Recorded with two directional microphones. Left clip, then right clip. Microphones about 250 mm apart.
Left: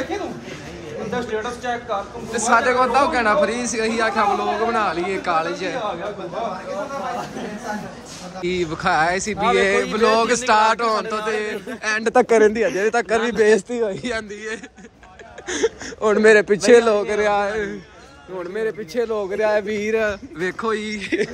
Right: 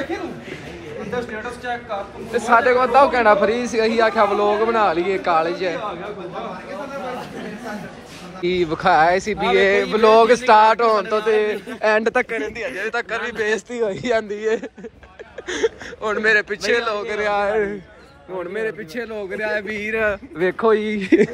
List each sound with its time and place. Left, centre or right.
2.3 s a man's voice: centre
8.4 s a man's voice: centre
12.0 s a man's voice: centre
12.6 s speech: left; by 14.2 s centre
14.3 s a man's voice: centre
15.4 s speech: centre
16.0 s a man's voice: left
17.0 s a man's voice: centre
17.5 s a man's voice: centre
18.4 s a man's voice: centre
19.0 s speech: left
19.9 s a man's voice: centre
20.3 s a man's voice: centre
21.0 s speech: right